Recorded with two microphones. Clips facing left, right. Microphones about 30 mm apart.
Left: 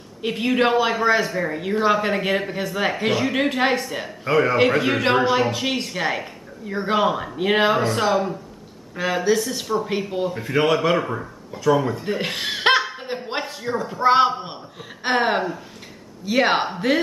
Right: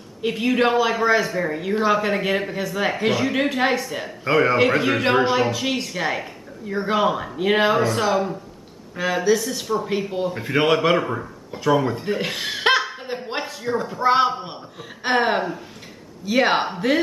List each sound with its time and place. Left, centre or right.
0.2 s a man's voice: centre
4.2 s a man's voice: centre
4.6 s speech: centre
10.3 s a man's voice: centre
11.5 s a man's voice: centre
12.1 s chuckle: centre
13.8 s a man's voice: centre